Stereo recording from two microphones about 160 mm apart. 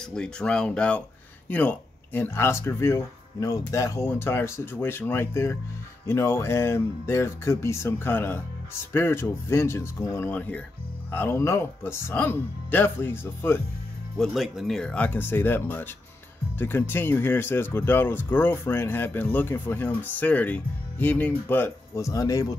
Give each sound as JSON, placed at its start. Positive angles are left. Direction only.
{"t": 0.0, "sound": "speech", "side_deg": 5}
{"t": 14.1, "sound": "speech", "side_deg": 0}